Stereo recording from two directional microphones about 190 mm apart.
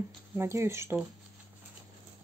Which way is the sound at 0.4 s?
15° right (ahead or behind).